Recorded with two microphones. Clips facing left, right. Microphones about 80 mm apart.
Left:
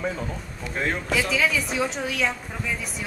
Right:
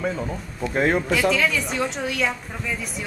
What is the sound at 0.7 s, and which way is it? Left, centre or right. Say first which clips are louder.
Speech: right 7 dB; right.